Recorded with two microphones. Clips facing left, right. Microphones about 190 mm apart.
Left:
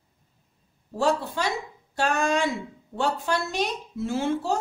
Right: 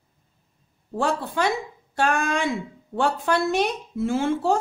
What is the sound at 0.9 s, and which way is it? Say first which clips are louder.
A woman's voice: even; 55° right (ahead or behind).